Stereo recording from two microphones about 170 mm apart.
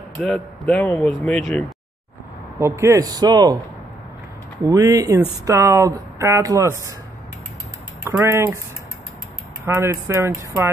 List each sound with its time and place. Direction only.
0.2 s speech: 5° left (ahead or behind)
2.6 s a man's voice: 15° right (ahead or behind)
4.6 s a man's voice: 20° right (ahead or behind)
8.0 s speech: 15° right (ahead or behind)
9.7 s speech: 15° right (ahead or behind)